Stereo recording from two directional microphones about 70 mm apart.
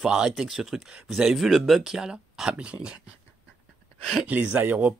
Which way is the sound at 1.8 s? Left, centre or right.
Centre.